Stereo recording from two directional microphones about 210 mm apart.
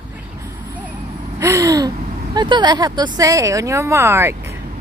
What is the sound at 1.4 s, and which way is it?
A woman's voice, 15° right (ahead or behind).